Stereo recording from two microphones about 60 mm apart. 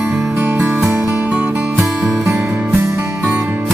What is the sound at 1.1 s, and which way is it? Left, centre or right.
Music, right.